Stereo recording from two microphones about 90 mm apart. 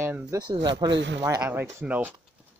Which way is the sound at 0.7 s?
55° right (ahead or behind).